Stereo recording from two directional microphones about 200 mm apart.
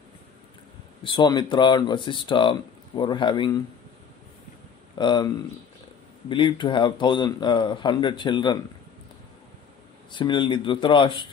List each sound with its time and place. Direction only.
1.0 s a man's voice: 25° left (ahead or behind)
4.9 s a man's voice: 20° left (ahead or behind)
10.1 s a man's voice: 25° left (ahead or behind)